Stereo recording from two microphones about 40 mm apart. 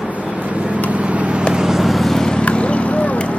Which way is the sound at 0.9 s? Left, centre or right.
Right.